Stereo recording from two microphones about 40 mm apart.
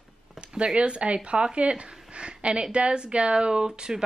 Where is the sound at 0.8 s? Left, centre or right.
Right.